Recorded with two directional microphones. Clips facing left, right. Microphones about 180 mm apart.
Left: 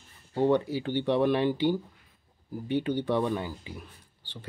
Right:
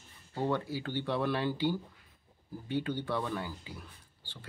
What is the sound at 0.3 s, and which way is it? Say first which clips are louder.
Speech: left 8 dB; 20° left (ahead or behind).